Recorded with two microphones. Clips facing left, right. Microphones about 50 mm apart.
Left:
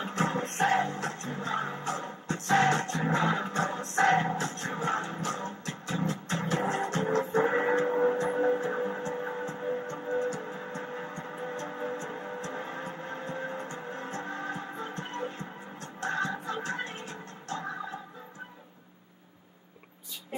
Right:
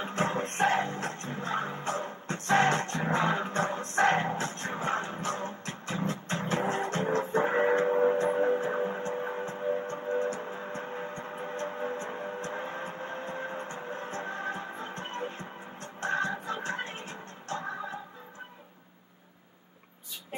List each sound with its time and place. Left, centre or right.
0.0 s music: right
10.7 s vehicle: right
11.5 s music: right